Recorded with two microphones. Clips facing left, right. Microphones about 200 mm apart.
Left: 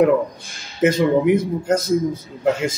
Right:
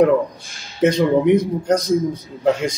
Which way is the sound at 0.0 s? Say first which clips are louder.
Right 1 dB; centre (ahead or behind).